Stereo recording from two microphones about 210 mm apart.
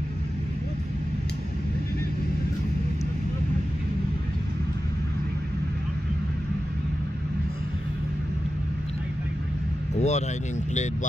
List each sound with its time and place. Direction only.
9.9 s vehicle: 30° left (ahead or behind)